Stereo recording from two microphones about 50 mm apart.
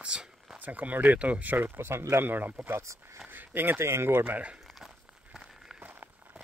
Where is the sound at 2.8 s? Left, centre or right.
Right.